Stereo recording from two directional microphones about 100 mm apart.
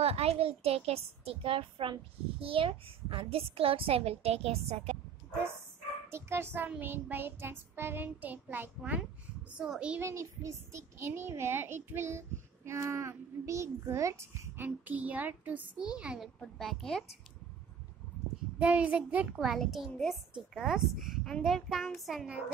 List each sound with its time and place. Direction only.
0.0 s a woman's voice: 90° right
6.0 s a child's voice: 25° right (ahead or behind); by 9.9 s 10° right (ahead or behind)
9.9 s a child's voice: 30° right (ahead or behind)
14.9 s a child's voice: 15° right (ahead or behind)
16.5 s a child's voice: 5° left (ahead or behind)
18.6 s a child's voice: 10° right (ahead or behind)
19.3 s a child's voice: centre (ahead or behind)